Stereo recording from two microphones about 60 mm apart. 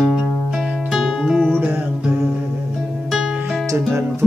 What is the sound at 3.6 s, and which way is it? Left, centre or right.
Music, right.